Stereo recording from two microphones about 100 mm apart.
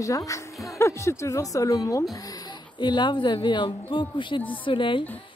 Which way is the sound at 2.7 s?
50° left (ahead or behind).